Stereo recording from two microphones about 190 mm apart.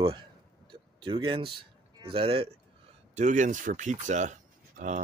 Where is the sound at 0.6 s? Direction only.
25° right (ahead or behind).